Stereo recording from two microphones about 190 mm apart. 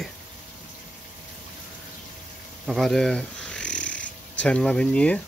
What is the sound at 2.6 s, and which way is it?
Snoring, centre (ahead or behind).